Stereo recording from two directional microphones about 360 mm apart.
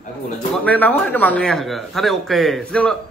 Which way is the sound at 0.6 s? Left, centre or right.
Centre.